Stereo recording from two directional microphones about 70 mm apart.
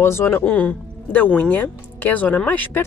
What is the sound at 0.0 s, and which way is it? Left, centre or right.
Speech, left.